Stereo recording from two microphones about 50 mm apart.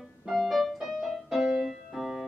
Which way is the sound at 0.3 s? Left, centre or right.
Centre.